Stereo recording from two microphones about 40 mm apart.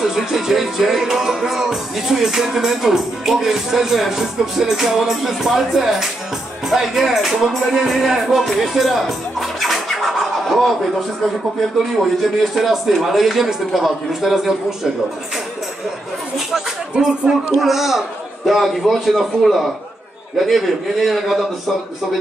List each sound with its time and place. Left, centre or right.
0.0 s music: centre
6.7 s speech: centre
12.5 s a man's voice: centre
16.9 s speech: right
17.6 s a man's voice: centre